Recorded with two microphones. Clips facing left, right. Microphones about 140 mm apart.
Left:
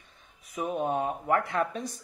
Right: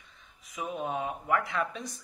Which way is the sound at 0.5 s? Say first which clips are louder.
Left 5 dB; 55° left (ahead or behind).